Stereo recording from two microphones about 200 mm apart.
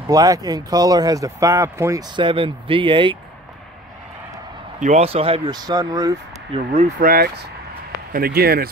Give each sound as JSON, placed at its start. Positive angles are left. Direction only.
{"t": 0.0, "sound": "speech", "side_deg": -20}
{"t": 4.7, "sound": "speech", "side_deg": -35}
{"t": 6.5, "sound": "speech", "side_deg": -30}
{"t": 7.0, "sound": "speech", "side_deg": -50}